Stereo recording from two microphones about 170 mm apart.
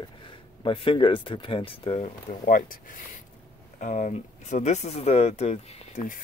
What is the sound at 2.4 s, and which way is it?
Speech, 55° left (ahead or behind).